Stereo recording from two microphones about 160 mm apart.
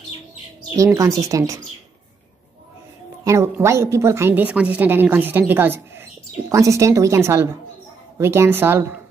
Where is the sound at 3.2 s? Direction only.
20° right (ahead or behind).